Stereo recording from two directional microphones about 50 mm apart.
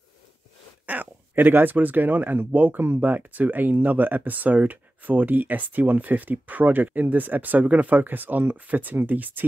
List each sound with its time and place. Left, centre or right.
0.8 s speech: right